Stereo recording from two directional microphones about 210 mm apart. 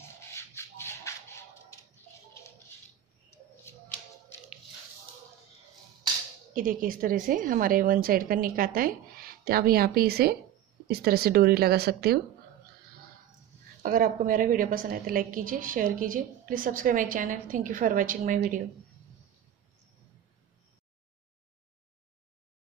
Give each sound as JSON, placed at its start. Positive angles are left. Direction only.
{"t": 0.3, "sound": "a sound", "side_deg": 10}
{"t": 6.5, "sound": "a woman's voice", "side_deg": -40}
{"t": 13.8, "sound": "a woman's voice", "side_deg": -40}